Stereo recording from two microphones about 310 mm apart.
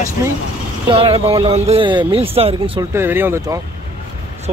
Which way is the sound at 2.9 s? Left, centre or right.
Centre.